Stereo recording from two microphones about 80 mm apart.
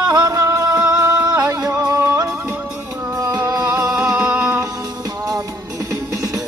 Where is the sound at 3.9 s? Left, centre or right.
Centre.